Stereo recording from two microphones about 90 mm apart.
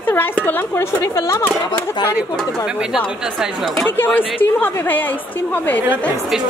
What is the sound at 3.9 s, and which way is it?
A woman's voice, 20° left (ahead or behind).